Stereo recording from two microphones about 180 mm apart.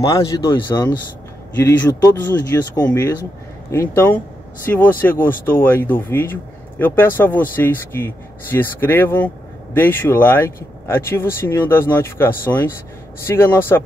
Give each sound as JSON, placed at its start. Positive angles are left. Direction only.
{"t": 0.0, "sound": "speech", "side_deg": 20}